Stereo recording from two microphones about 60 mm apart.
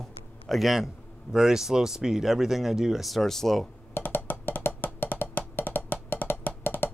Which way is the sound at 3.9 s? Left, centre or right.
Left.